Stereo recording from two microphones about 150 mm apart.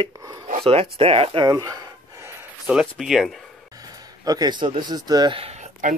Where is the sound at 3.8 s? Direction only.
25° right (ahead or behind).